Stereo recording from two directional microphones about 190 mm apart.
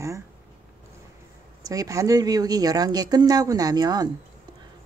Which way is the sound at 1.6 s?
20° right (ahead or behind).